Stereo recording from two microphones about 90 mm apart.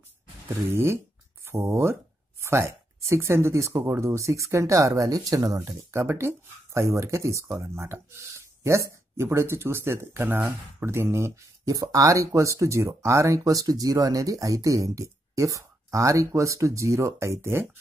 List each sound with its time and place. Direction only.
1.4 s speech: 25° right (ahead or behind)
5.9 s speech: 30° right (ahead or behind)